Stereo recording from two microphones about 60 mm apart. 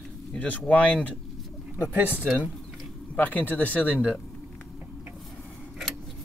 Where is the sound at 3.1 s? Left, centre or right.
Left.